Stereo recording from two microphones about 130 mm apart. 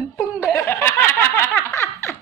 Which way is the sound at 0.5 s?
20° left (ahead or behind).